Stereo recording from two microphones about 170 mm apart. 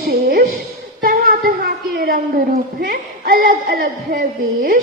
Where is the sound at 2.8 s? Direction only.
60° right (ahead or behind).